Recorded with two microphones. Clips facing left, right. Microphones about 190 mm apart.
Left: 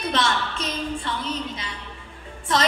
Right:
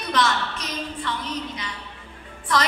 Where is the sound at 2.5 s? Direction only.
25° left (ahead or behind).